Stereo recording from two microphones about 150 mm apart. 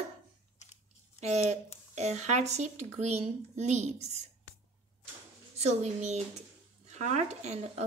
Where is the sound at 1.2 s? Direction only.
45° right (ahead or behind).